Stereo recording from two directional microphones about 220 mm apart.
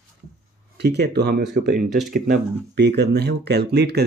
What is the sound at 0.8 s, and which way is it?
Speech, 50° right (ahead or behind).